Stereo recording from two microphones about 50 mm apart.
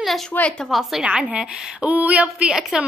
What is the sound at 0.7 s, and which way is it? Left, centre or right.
Speech, centre.